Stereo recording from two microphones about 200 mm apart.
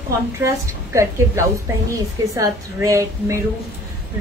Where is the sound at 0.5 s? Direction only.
15° right (ahead or behind).